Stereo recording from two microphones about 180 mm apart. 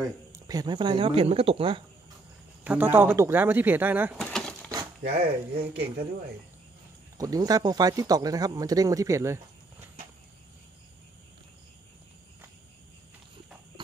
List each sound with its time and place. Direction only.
0.0 s speech: 20° right (ahead or behind)
2.6 s speech: 10° right (ahead or behind)
4.2 s a sound: 5° left (ahead or behind)
5.0 s speech: 65° right (ahead or behind)
7.2 s speech: 20° right (ahead or behind)